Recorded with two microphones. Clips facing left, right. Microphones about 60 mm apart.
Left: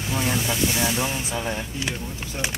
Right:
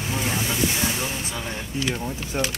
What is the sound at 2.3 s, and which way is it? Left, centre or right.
Speech, right.